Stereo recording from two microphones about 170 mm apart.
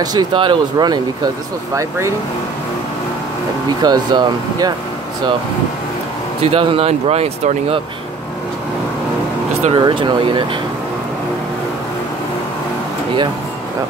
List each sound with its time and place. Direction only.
0.0 s speech: 25° right (ahead or behind)
3.8 s speech: 25° right (ahead or behind)
6.4 s speech: 35° right (ahead or behind)
9.6 s speech: 35° right (ahead or behind)